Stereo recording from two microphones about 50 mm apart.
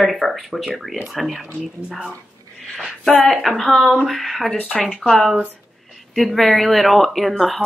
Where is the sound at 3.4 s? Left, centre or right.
Centre.